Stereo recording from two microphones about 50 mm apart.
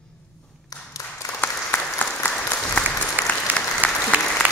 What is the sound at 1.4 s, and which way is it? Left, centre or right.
Applause, left.